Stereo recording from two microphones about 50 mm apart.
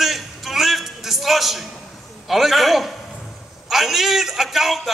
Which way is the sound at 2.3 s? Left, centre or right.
Centre.